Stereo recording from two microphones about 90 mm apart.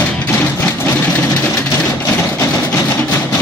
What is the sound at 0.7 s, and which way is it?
Vehicle, 30° left (ahead or behind).